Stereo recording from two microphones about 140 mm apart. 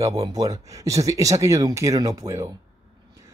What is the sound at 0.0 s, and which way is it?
Speech, 25° right (ahead or behind).